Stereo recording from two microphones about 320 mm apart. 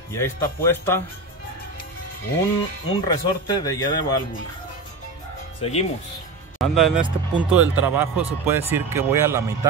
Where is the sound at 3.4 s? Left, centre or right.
Centre.